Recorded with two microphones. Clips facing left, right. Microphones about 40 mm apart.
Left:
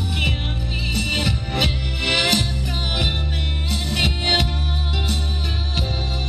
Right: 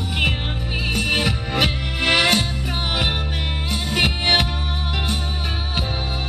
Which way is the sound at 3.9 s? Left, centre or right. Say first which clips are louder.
Right 2 dB; right.